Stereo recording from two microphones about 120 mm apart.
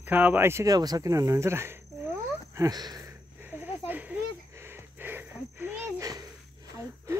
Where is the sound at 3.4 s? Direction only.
15° right (ahead or behind).